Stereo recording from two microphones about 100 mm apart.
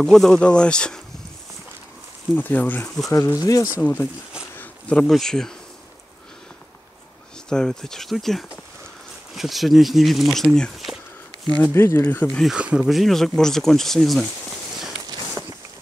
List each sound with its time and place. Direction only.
0.0 s speech: 5° left (ahead or behind)
2.3 s speech: 15° left (ahead or behind)
3.1 s speech: 30° left (ahead or behind)
3.8 s speech: 15° left (ahead or behind)
4.6 s insect: 15° left (ahead or behind)
5.1 s speech: 5° left (ahead or behind)
7.4 s speech: 5° left (ahead or behind)
11.6 s speech: 25° left (ahead or behind)
12.3 s speech: 5° left (ahead or behind)
12.5 s speech: 10° right (ahead or behind)